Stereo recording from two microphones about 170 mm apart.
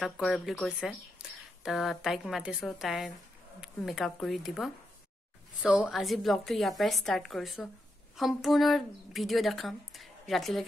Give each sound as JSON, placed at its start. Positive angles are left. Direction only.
{"t": 0.0, "sound": "speech", "side_deg": 0}